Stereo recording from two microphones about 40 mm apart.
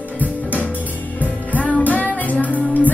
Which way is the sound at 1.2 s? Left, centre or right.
Left.